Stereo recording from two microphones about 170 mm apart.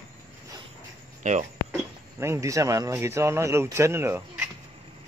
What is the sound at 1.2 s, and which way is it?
Speech, 45° right (ahead or behind).